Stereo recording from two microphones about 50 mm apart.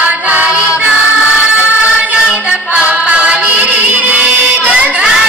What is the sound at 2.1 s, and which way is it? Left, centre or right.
Music, right.